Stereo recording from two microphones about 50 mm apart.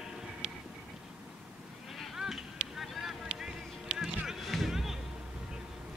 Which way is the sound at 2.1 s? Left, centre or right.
Centre.